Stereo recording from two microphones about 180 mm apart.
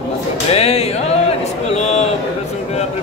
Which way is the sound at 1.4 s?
35° left (ahead or behind).